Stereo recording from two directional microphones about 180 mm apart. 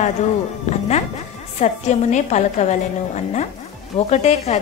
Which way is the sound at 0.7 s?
40° left (ahead or behind).